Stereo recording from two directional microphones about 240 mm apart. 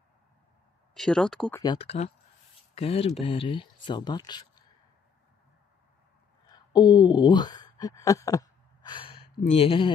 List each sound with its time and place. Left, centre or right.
0.9 s speech: centre
1.6 s speech: left
6.5 s speech: centre